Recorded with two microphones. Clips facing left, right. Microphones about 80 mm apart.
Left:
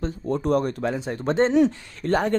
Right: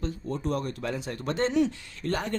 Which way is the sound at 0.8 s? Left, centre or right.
Left.